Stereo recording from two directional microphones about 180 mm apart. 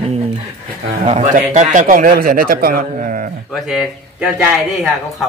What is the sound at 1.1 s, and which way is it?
A man's voice, 45° right (ahead or behind).